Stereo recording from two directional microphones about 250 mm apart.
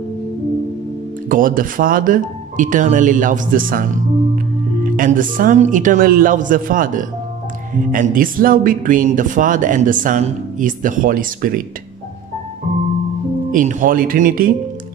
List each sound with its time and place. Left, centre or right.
1.3 s speech: right
4.9 s speech: right
13.5 s speech: right